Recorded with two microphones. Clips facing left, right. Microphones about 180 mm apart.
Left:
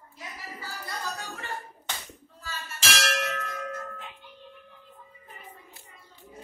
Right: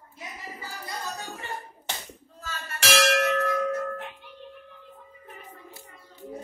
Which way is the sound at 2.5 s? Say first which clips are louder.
Right 7 dB; 65° right (ahead or behind).